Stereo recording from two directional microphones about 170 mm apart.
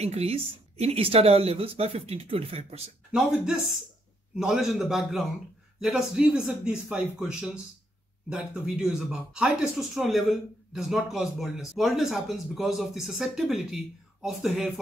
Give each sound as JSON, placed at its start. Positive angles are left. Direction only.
{"t": 0.0, "sound": "speech", "side_deg": -35}
{"t": 3.1, "sound": "a man's voice", "side_deg": -5}